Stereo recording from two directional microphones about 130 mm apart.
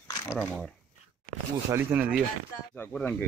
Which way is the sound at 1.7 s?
20° right (ahead or behind).